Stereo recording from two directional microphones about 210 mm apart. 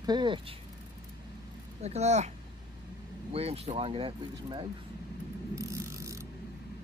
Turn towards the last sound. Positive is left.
turn(degrees=-15)  # may be behind; listen again after turning